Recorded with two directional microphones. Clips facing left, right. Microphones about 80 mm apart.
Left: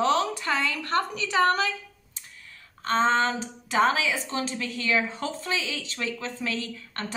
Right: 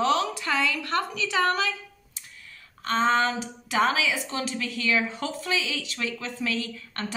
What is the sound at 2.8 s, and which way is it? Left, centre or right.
Speech, left.